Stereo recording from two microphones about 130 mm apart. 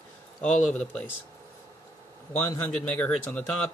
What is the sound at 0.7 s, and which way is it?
Speech, 10° left (ahead or behind).